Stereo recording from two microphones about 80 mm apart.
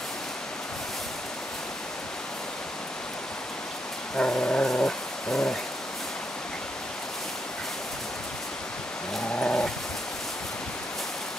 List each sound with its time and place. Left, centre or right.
4.2 s dog: centre
9.4 s dog: centre